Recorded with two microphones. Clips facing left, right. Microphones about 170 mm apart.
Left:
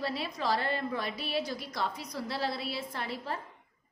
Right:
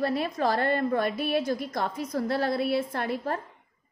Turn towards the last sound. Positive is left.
turn(degrees=-50)  # may be behind; listen again after turning